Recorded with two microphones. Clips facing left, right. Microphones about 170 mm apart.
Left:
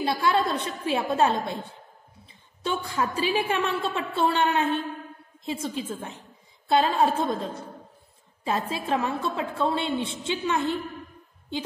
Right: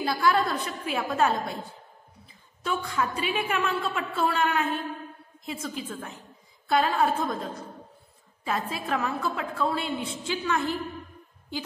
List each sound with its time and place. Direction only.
0.0 s a woman's voice: 25° left (ahead or behind)
8.5 s a woman's voice: 30° left (ahead or behind)